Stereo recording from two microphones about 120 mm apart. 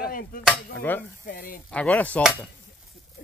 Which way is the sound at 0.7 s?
15° left (ahead or behind).